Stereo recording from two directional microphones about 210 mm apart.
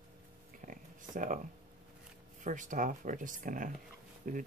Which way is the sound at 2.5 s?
35° right (ahead or behind).